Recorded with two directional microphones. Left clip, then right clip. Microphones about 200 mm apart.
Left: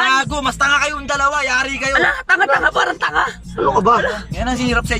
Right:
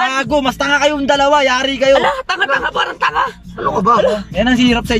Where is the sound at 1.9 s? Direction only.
15° right (ahead or behind).